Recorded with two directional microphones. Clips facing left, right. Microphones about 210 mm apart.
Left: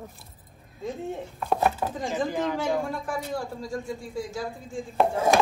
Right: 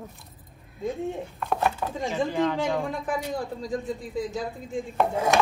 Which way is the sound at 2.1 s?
15° left (ahead or behind).